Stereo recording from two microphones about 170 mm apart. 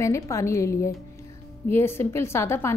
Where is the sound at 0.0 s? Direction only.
15° left (ahead or behind).